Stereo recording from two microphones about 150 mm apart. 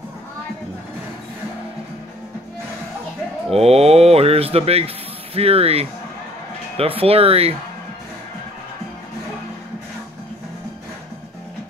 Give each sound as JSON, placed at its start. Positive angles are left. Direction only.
{"t": 3.5, "sound": "speech", "side_deg": -45}